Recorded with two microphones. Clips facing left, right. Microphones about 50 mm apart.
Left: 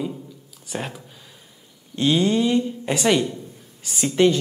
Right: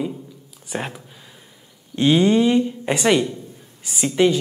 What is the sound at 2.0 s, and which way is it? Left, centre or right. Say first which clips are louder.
Speech: right 4 dB; right.